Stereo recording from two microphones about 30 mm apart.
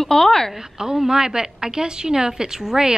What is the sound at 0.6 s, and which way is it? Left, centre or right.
A woman's voice, centre.